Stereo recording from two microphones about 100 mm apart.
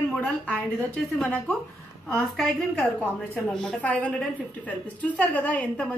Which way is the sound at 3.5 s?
10° left (ahead or behind).